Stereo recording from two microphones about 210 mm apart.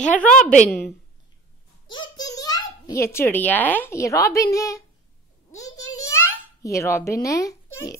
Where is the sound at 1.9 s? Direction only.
20° left (ahead or behind).